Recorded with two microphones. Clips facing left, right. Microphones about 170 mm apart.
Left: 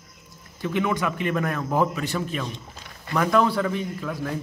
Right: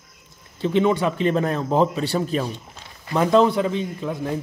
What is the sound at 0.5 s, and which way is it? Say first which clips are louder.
A man's voice: right 6 dB; 25° right (ahead or behind).